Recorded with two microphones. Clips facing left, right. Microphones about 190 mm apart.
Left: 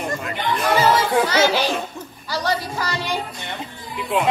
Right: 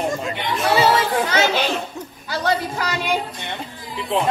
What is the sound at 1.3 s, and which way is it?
Speech, 20° right (ahead or behind).